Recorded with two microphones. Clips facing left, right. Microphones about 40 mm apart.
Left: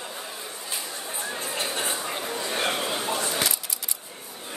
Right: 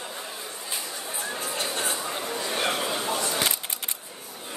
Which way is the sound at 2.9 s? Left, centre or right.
Centre.